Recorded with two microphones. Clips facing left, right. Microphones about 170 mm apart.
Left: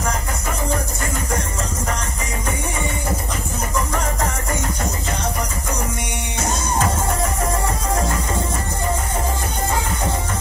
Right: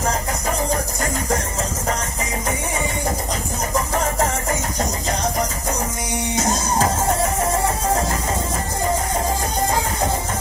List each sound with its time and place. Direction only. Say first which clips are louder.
6.4 s music: even; 35° right (ahead or behind)